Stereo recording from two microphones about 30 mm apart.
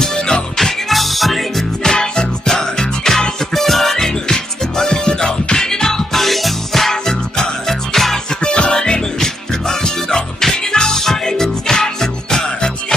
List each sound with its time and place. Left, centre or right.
0.0 s music: left
0.6 s music: centre
1.8 s music: left
3.3 s music: centre
6.1 s music: centre
6.9 s music: centre
8.4 s music: left
8.7 s music: left